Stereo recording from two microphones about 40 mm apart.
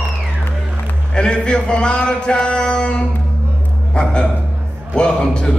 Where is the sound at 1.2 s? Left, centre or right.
Left.